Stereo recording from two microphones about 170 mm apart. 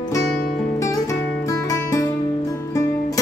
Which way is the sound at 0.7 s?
20° left (ahead or behind).